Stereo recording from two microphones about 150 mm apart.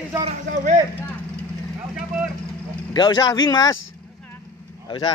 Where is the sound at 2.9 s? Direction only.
30° left (ahead or behind).